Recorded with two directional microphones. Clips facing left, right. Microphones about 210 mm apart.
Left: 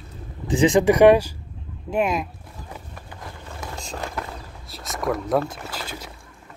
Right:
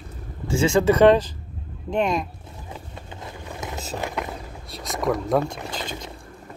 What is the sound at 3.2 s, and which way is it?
Vehicle, 20° right (ahead or behind).